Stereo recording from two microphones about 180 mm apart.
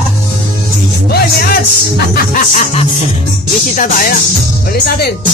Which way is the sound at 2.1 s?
50° left (ahead or behind).